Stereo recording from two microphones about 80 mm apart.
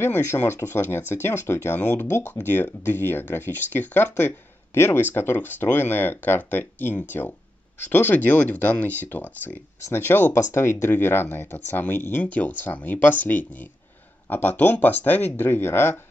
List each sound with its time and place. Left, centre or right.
0.0 s speech: left